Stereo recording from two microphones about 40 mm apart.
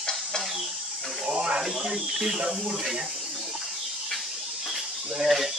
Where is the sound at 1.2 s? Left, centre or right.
Right.